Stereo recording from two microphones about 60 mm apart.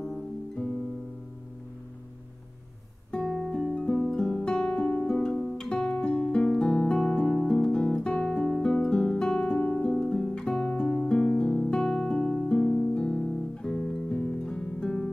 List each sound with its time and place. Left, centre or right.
3.1 s music: centre
5.7 s music: centre
6.5 s guitar: centre
8.9 s music: centre
9.6 s harp: left
9.8 s music: centre